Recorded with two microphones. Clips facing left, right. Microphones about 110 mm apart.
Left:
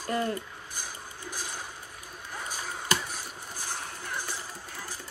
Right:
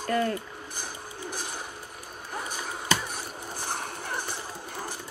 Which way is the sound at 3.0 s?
60° right (ahead or behind).